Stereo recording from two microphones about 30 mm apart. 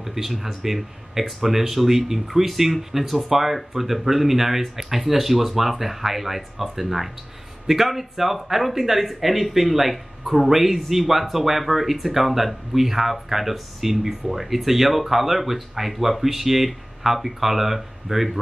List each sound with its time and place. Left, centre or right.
0.0 s speech: centre